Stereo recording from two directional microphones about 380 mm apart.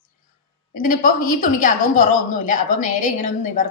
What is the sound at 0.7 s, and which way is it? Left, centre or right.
A woman's voice, left.